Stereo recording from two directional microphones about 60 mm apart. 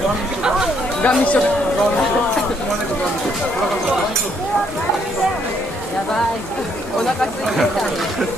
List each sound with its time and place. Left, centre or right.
1.0 s speech: left